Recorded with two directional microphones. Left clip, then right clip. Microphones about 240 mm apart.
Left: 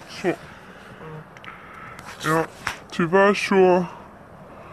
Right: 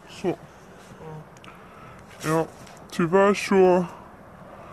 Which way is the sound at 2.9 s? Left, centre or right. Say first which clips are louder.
Left 2 dB; centre.